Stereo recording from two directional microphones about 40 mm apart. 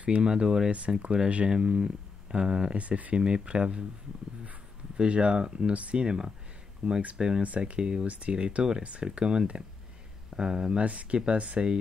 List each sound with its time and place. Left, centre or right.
0.0 s speech: right
0.7 s speech: right
2.7 s speech: right
3.2 s speech: centre
4.9 s speech: right
6.0 s speech: centre
7.4 s speech: right
7.7 s speech: right
10.8 s speech: right